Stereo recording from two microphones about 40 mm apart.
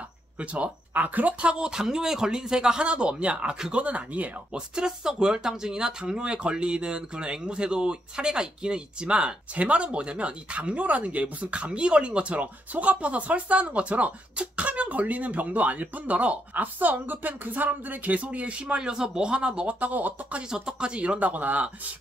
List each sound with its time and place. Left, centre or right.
0.4 s speech: right
1.4 s speech: right
2.8 s speech: right
4.6 s speech: centre; by 18.8 s right
18.8 s speech: centre
19.8 s speech: right
20.4 s speech: centre; by 21.6 s right